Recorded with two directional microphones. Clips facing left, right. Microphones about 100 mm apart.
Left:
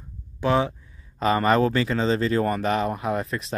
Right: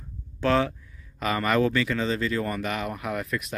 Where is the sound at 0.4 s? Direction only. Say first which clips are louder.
Left 1 dB; 15° left (ahead or behind).